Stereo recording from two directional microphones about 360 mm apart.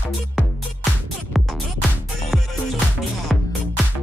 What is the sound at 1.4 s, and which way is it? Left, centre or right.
Music, centre.